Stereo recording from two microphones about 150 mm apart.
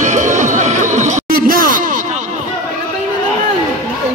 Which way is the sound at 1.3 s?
75° right (ahead or behind).